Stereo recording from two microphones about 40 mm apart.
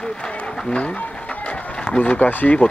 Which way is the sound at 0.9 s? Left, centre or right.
Left.